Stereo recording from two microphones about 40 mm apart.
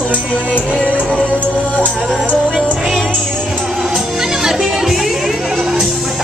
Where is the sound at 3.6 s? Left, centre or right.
Centre.